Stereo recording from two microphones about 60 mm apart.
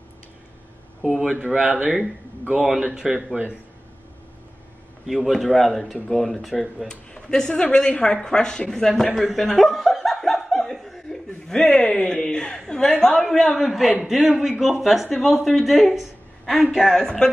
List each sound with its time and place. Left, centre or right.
1.2 s speech: centre
2.8 s speech: centre
5.0 s speech: centre
6.9 s a woman's voice: centre